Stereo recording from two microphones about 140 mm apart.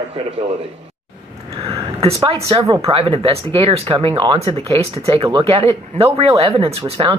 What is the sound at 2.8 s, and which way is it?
Speech, 40° right (ahead or behind).